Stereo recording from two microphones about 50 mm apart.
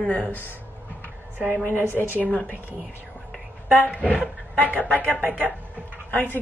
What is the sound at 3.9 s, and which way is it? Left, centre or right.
A woman's voice, left.